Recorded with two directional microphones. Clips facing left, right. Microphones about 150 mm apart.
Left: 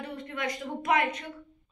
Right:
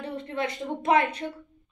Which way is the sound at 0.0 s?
30° right (ahead or behind).